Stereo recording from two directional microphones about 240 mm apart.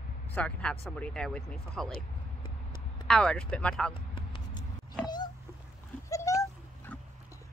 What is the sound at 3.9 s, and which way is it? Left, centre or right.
Basketball bounce, left.